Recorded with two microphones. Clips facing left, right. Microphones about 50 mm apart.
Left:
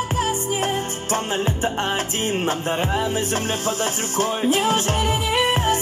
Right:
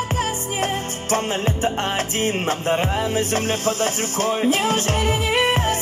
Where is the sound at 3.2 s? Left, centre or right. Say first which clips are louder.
Right 2 dB; right.